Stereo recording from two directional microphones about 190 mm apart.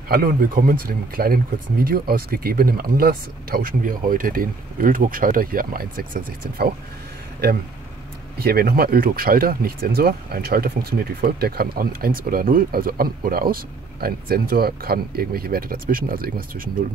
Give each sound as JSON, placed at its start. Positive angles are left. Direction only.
{"t": 0.1, "sound": "speech", "side_deg": -50}
{"t": 8.4, "sound": "speech", "side_deg": -55}